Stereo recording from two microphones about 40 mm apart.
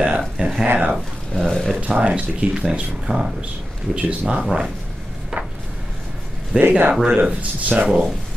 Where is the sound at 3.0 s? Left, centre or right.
Centre.